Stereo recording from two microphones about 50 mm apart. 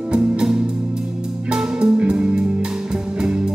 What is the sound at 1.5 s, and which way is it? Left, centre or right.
Music, centre.